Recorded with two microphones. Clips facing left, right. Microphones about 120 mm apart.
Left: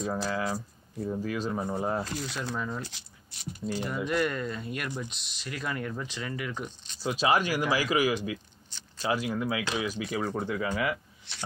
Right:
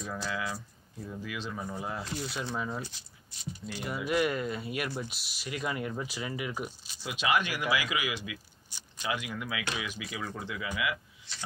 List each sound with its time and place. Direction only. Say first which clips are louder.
0.0 s speech: left 5 dB; 40° left (ahead or behind)
2.5 s speech: left 1 dB; 10° right (ahead or behind)
2.8 s speech: left 1 dB; 80° left
3.8 s speech: right 1 dB; 5° right (ahead or behind)
7.0 s speech: left 4 dB; 35° left (ahead or behind)
11.3 s shuffle: even; 70° left (ahead or behind)